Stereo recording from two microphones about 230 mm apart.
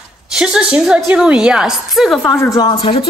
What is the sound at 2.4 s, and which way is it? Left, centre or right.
Speech, centre.